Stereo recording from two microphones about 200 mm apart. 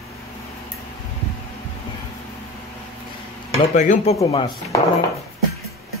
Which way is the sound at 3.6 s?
35° left (ahead or behind).